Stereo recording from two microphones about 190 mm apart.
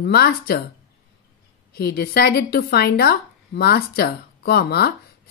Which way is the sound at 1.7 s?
55° left (ahead or behind).